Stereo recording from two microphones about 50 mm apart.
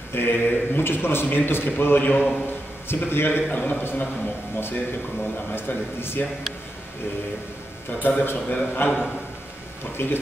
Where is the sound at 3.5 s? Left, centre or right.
Left.